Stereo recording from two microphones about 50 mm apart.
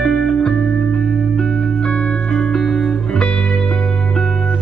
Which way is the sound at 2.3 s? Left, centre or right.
Centre.